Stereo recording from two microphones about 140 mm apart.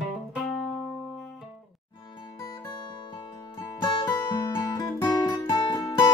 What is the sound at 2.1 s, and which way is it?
Music, 35° left (ahead or behind).